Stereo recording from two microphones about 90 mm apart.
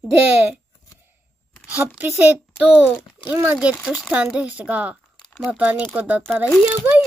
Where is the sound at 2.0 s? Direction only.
20° right (ahead or behind).